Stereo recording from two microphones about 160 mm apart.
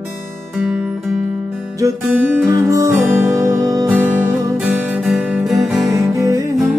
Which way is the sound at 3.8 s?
10° right (ahead or behind).